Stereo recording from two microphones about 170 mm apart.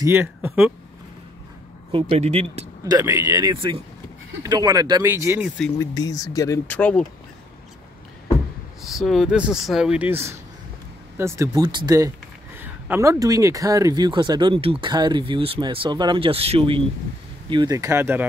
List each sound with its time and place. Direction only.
0.0 s speech: 15° right (ahead or behind)
1.9 s speech: 35° right (ahead or behind)
2.8 s speech: 20° right (ahead or behind)
5.8 s speech: 20° left (ahead or behind)
6.8 s speech: 5° left (ahead or behind)
8.8 s speech: centre (ahead or behind)